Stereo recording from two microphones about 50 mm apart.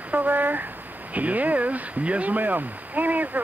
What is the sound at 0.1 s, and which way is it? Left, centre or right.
Speech, right.